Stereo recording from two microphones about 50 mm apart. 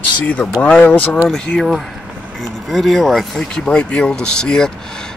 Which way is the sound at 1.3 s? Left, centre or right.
Centre.